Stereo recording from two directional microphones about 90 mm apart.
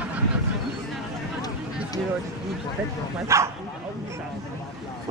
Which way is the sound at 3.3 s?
35° right (ahead or behind).